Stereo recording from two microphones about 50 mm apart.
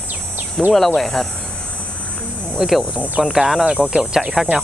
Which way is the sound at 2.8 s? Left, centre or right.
Right.